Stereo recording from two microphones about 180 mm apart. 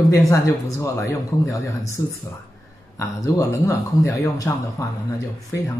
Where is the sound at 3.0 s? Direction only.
15° left (ahead or behind).